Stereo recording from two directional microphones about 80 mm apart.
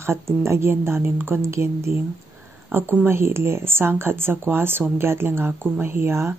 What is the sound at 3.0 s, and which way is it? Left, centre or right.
A woman's voice, right.